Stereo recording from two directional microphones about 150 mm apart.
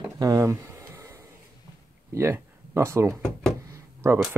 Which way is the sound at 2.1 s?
15° right (ahead or behind).